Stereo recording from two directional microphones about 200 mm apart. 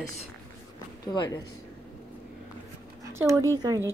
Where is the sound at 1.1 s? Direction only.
20° left (ahead or behind).